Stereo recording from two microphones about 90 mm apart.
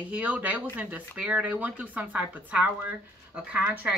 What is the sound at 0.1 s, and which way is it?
Speech, 15° right (ahead or behind).